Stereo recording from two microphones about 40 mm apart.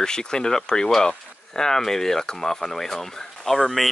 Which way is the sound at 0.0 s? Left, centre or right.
Centre.